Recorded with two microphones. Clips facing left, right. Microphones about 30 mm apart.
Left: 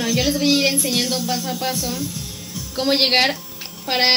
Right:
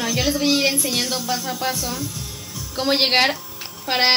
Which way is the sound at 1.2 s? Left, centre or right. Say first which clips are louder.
Left 1 dB; left.